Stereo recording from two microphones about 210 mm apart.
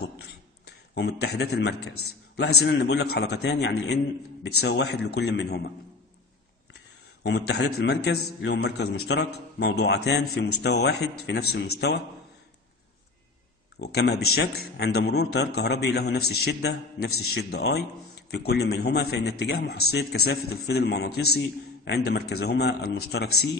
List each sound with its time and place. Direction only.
0.7 s a man's voice: 50° left (ahead or behind)
7.2 s a man's voice: 55° left (ahead or behind)
13.7 s a man's voice: 50° left (ahead or behind)